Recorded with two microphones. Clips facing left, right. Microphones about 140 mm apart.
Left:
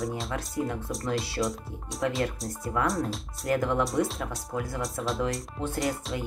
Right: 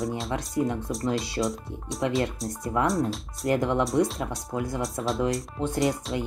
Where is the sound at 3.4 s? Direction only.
20° right (ahead or behind).